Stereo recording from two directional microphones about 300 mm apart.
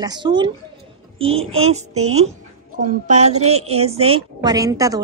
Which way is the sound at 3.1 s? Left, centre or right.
Right.